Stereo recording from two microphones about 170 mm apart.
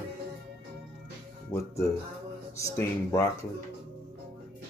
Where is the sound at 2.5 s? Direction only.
20° left (ahead or behind).